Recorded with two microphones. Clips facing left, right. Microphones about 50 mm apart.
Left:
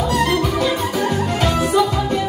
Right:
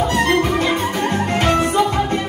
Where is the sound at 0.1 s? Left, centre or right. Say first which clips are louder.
Right 1 dB; right.